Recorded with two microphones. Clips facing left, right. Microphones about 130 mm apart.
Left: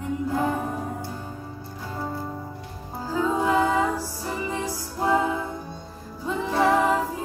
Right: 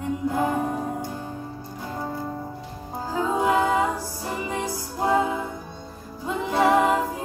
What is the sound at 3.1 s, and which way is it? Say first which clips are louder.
Music: even; 20° right (ahead or behind).